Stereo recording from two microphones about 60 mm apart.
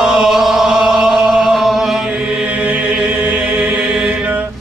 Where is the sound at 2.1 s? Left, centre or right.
Centre.